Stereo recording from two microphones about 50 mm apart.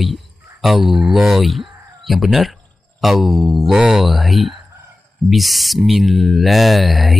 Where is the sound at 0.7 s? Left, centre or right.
Centre.